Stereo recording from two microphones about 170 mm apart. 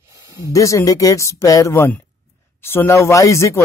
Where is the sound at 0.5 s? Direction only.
20° left (ahead or behind).